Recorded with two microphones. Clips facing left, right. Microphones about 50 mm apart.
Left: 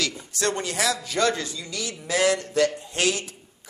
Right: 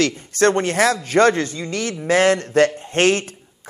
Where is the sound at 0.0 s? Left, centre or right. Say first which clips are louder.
Right 10 dB; right.